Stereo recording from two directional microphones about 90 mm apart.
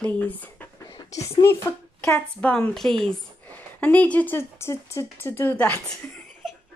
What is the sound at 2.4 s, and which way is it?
Speech, 15° left (ahead or behind).